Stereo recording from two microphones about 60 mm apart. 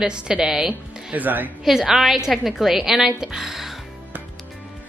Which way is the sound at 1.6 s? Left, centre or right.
Centre.